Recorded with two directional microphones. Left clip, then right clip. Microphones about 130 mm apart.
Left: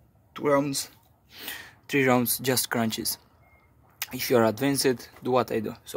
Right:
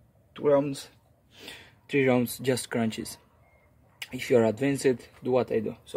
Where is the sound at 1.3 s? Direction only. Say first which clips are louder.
Left 6 dB; centre (ahead or behind).